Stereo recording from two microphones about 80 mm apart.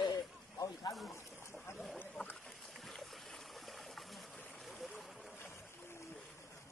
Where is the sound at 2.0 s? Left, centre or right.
Left.